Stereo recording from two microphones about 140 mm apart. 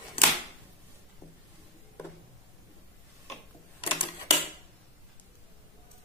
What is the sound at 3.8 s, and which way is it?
Typewriter, 40° left (ahead or behind).